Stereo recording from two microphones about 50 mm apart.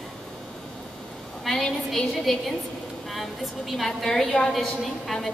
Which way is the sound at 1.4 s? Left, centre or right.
Centre.